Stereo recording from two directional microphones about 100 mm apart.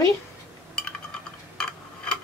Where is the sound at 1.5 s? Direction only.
10° left (ahead or behind).